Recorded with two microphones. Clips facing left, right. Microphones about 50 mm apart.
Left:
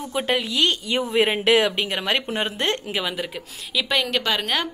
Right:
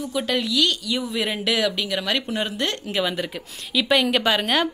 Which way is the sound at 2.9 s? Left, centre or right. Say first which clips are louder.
Right 2 dB; centre.